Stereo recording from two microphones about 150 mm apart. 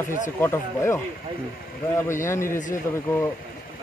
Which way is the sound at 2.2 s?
15° left (ahead or behind).